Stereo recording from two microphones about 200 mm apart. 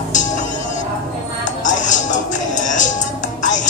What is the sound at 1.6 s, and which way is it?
Music, 40° left (ahead or behind).